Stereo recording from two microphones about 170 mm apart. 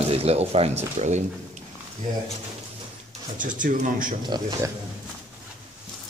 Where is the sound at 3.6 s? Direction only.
50° right (ahead or behind).